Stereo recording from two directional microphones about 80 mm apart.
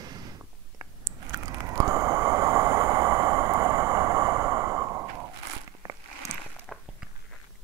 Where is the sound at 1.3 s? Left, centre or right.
Right.